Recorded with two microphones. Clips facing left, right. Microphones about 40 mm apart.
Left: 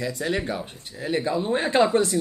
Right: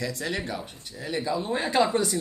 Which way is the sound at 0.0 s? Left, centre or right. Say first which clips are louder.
Left 4 dB; centre.